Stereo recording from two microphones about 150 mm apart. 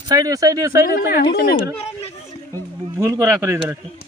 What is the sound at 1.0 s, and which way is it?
Speech, 90° left.